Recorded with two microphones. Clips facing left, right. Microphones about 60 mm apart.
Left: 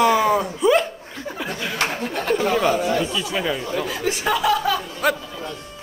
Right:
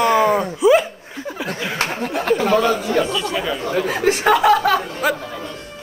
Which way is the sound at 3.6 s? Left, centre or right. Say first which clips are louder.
Right 6 dB; right.